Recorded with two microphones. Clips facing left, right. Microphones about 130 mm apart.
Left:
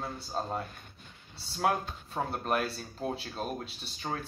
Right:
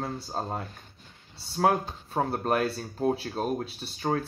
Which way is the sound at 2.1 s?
40° right (ahead or behind).